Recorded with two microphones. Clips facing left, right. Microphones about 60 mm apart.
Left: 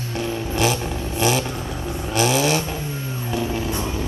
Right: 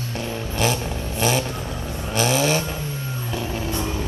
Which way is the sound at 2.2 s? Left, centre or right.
Centre.